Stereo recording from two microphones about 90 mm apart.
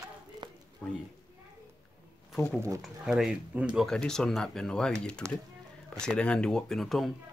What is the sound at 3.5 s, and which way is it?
Speech, 15° right (ahead or behind).